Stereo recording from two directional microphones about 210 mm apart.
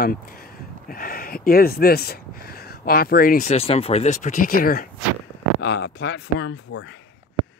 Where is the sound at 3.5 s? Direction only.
30° left (ahead or behind); by 4.8 s 45° left (ahead or behind).